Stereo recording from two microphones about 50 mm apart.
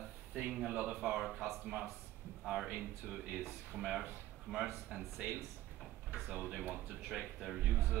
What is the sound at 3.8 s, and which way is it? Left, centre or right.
Speech, centre.